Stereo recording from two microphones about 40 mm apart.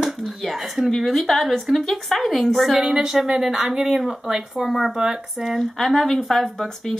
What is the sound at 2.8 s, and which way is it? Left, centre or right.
A woman's voice, centre.